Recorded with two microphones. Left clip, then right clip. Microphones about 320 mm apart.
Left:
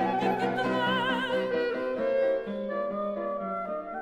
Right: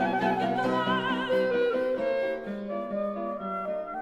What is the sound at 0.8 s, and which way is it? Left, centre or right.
Music, left.